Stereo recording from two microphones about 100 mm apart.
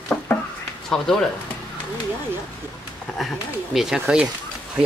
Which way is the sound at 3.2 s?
Centre (ahead or behind).